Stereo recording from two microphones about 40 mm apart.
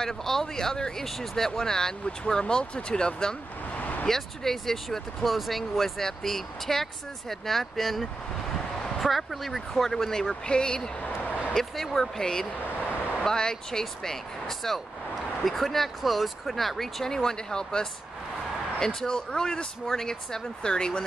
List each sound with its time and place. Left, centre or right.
0.0 s speech: centre
1.0 s speech: centre
3.7 s vehicle: left
4.1 s speech: centre
5.2 s speech: centre
10.4 s speech: left
11.5 s speech: centre
18.9 s speech: centre